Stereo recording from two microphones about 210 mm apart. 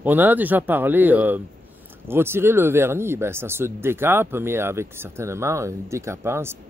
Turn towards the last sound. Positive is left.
turn(degrees=-10)  # may be behind; listen again after turning